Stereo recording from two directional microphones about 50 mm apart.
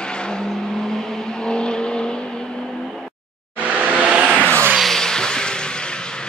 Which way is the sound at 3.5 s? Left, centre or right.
Right.